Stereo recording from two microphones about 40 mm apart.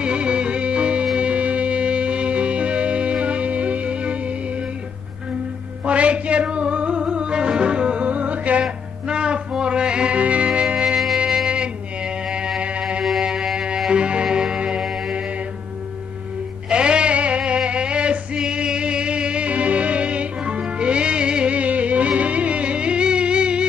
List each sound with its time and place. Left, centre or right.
0.0 s music: right
5.9 s music: right
8.1 s music: right
9.0 s music: right
11.5 s a sound: right
12.5 s music: right
13.2 s music: centre
14.8 s music: centre
16.6 s music: right